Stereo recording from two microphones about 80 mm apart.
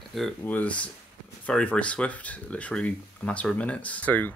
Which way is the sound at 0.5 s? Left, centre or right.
Centre.